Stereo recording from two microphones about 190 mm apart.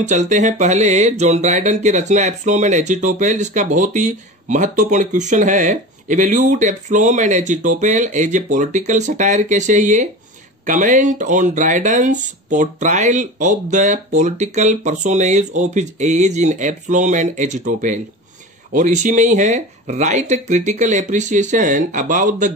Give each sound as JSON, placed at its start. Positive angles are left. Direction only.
{"t": 0.0, "sound": "speech", "side_deg": -40}